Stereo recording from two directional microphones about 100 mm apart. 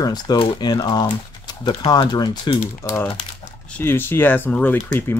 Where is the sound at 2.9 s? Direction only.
20° left (ahead or behind).